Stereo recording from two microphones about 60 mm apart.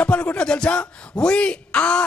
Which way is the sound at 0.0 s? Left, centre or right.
Centre.